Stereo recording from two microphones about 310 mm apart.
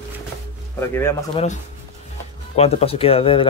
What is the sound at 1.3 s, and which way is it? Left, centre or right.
Speech, left.